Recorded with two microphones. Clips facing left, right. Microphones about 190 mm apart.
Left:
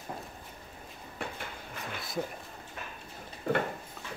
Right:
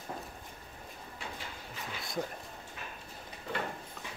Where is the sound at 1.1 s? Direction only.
55° left (ahead or behind).